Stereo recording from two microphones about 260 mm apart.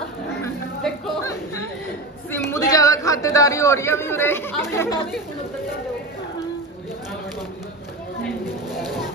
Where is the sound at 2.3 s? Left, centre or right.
Centre.